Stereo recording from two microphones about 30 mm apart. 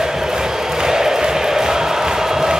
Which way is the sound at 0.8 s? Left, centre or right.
Centre.